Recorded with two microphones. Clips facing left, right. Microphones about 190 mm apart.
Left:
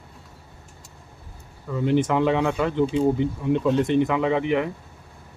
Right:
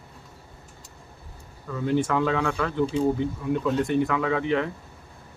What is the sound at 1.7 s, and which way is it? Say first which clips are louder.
Speech: left 3 dB; 20° left (ahead or behind).